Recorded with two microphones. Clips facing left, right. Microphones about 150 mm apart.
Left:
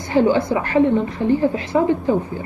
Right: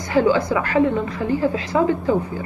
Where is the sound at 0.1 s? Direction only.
25° left (ahead or behind).